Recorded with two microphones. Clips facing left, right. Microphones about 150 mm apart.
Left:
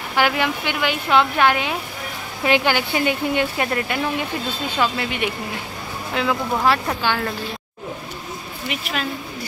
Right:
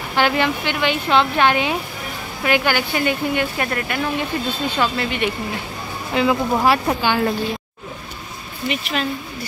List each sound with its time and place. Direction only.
0.1 s speech: 10° left (ahead or behind)
2.4 s speech: 20° left (ahead or behind)
6.1 s speech: centre (ahead or behind)
6.5 s speech: 15° right (ahead or behind)
8.6 s speech: 5° left (ahead or behind)